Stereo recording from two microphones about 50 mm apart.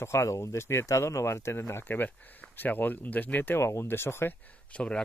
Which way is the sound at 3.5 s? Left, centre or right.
Left.